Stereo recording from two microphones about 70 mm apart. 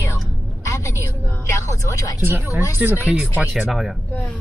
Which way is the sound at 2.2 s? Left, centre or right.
Right.